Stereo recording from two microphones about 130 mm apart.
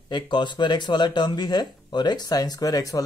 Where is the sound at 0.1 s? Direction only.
35° left (ahead or behind).